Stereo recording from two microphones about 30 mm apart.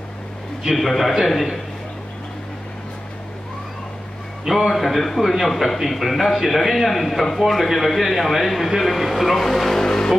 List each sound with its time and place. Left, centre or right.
0.7 s a man's voice: centre
4.5 s a man's voice: centre
9.8 s music: centre